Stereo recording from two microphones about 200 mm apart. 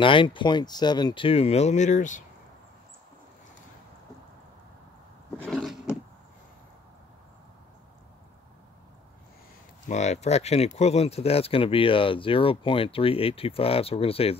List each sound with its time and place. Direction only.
0.0 s speech: 25° left (ahead or behind)
5.4 s roar: 5° left (ahead or behind)
9.8 s speech: 35° left (ahead or behind)